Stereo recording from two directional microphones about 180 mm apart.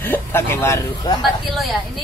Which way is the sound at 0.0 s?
10° left (ahead or behind).